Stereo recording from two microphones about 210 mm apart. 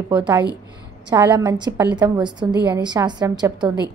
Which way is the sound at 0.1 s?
10° right (ahead or behind).